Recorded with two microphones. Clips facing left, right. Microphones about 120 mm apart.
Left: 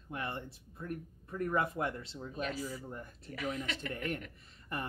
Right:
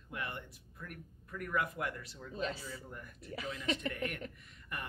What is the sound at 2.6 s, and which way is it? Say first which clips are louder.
A woman's voice: left 5 dB; 25° left (ahead or behind).